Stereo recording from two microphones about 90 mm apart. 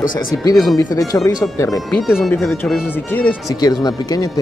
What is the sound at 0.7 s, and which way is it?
Speech, 40° left (ahead or behind).